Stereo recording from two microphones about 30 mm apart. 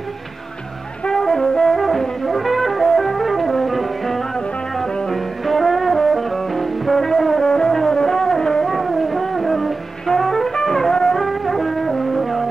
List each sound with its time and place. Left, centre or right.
1.1 s brass instrument: centre
1.8 s music: centre
5.1 s music: centre
7.4 s music: left
8.6 s music: centre
10.0 s jazz: centre
10.5 s music: centre
11.1 s music: centre